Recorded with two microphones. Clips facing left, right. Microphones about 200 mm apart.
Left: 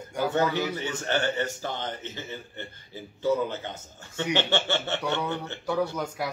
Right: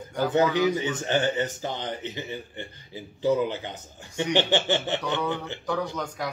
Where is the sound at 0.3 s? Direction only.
15° right (ahead or behind).